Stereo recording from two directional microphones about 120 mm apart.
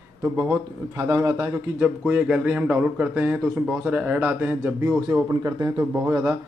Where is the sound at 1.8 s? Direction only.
10° right (ahead or behind).